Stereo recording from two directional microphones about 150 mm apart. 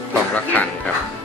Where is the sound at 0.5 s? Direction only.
10° left (ahead or behind).